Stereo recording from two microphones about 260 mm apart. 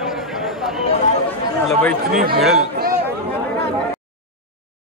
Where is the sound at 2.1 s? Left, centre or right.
Right.